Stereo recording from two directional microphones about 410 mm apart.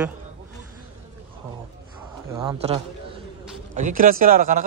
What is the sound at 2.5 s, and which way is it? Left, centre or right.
Speech, centre.